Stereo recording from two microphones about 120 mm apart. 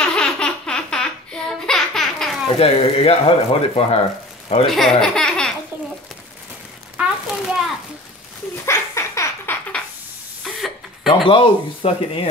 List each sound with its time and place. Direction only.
0.0 s baby laughter: 5° left (ahead or behind)
2.4 s speech: 55° left (ahead or behind)
4.6 s speech: 5° left (ahead or behind)
5.0 s baby laughter: 5° left (ahead or behind)
7.0 s a sound: 5° right (ahead or behind)
8.6 s laughter: 25° left (ahead or behind)
10.4 s a sound: centre (ahead or behind)
11.2 s speech: 45° left (ahead or behind)